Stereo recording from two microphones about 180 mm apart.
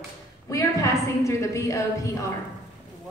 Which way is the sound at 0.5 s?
15° left (ahead or behind).